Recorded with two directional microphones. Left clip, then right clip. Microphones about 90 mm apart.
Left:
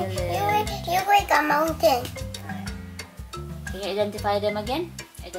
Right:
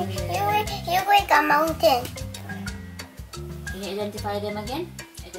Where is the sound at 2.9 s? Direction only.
10° right (ahead or behind).